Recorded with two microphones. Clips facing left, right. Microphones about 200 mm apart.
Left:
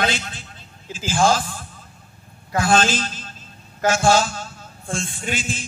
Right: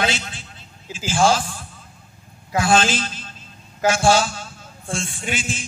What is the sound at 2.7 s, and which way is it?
A man's voice, 50° left (ahead or behind).